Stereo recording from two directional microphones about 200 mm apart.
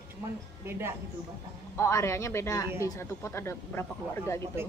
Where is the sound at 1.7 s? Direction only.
15° left (ahead or behind).